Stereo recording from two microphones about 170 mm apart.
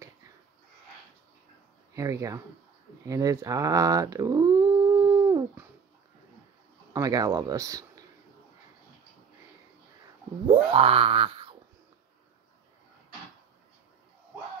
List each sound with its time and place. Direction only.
2.0 s speech: 20° right (ahead or behind)
3.1 s dog: 20° right (ahead or behind)
6.9 s speech: 20° right (ahead or behind)
10.5 s wail: 35° right (ahead or behind)